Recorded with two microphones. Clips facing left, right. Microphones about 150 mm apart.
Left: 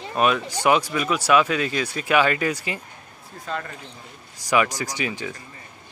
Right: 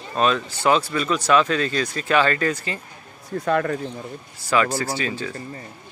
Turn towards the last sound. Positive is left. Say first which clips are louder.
# right 2 dB
turn(degrees=15)  # may be behind; listen again after turning